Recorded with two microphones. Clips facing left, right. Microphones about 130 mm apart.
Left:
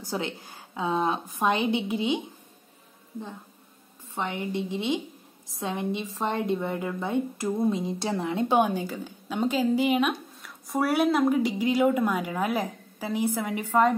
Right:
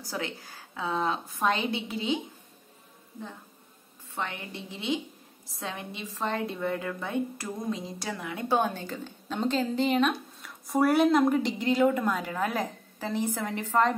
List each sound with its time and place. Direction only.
0.0 s a woman's voice: 20° left (ahead or behind)
4.1 s a woman's voice: 20° left (ahead or behind)